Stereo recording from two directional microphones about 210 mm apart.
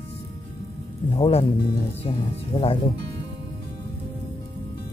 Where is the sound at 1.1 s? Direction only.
25° left (ahead or behind).